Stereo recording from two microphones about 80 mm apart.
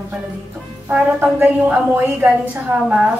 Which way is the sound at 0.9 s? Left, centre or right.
Right.